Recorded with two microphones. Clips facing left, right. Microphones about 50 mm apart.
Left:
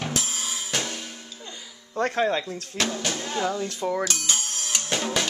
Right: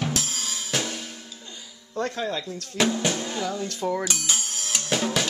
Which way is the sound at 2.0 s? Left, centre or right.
Left.